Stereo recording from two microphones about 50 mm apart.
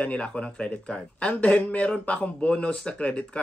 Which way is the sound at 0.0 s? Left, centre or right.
Left.